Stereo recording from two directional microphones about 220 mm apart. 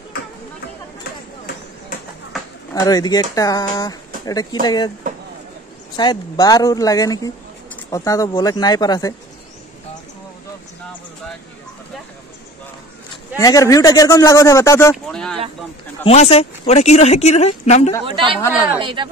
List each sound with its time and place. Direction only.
2.7 s speech: 15° left (ahead or behind)
5.9 s speech: 20° left (ahead or behind)
13.4 s speech: 15° left (ahead or behind)
15.0 s speech: centre (ahead or behind)
16.0 s speech: 30° left (ahead or behind)
18.0 s a woman's voice: 25° right (ahead or behind)